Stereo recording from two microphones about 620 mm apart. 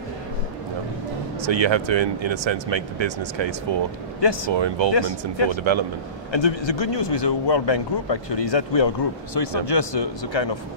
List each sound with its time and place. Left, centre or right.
1.4 s speech: right
4.9 s speech: left
5.7 s speech: right
6.3 s speech: left